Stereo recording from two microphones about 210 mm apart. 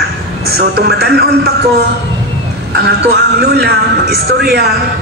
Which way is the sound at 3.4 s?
50° right (ahead or behind).